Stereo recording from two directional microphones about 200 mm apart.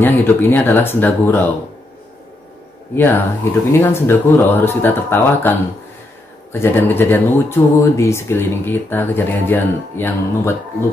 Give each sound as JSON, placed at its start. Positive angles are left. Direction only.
{"t": 0.0, "sound": "speech", "side_deg": 10}
{"t": 3.0, "sound": "speech", "side_deg": 10}